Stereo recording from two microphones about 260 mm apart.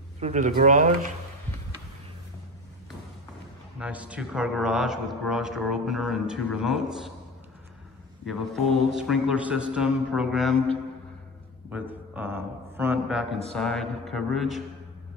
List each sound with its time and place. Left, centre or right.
0.2 s speech: right
3.8 s a man's voice: centre
8.3 s a man's voice: centre
11.7 s a man's voice: centre